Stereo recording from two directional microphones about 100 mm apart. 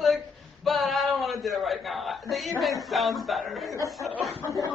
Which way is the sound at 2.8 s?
Centre (ahead or behind).